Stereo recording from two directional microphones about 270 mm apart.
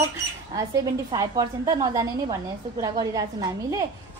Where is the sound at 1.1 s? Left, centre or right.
Centre.